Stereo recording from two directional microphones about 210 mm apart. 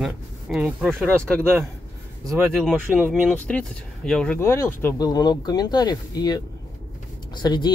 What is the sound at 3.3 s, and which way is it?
Speech, 5° left (ahead or behind).